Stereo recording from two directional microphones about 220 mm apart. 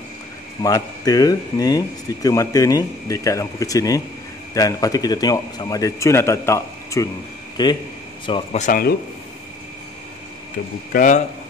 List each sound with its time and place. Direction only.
0.6 s speech: 15° left (ahead or behind)
8.6 s a man's voice: 40° left (ahead or behind)
10.9 s a man's voice: 40° left (ahead or behind)